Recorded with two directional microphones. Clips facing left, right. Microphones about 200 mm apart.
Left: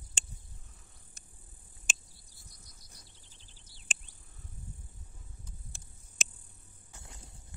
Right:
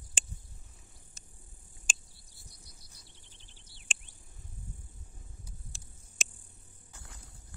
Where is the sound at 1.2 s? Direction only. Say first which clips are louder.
Right 1 dB; 55° left (ahead or behind).